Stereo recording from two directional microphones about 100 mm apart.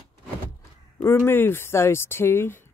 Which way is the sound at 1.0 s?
25° left (ahead or behind).